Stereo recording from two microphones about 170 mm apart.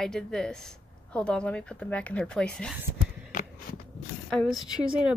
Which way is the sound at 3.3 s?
45° left (ahead or behind).